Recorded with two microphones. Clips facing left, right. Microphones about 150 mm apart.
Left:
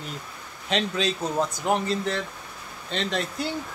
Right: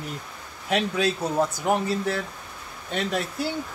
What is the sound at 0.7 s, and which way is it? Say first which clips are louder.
Speech: right 2 dB; 10° right (ahead or behind).